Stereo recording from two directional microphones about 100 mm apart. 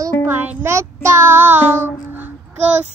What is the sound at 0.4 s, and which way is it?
Child singing, 25° right (ahead or behind).